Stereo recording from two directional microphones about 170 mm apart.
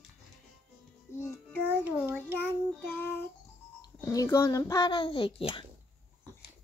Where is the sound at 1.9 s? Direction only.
10° right (ahead or behind).